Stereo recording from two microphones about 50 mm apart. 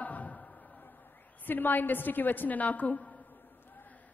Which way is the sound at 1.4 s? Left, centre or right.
Left.